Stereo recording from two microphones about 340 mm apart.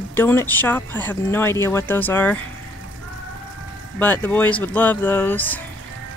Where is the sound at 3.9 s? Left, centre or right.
Centre.